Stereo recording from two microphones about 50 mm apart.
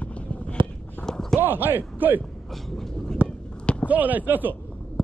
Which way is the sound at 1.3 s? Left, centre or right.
Right.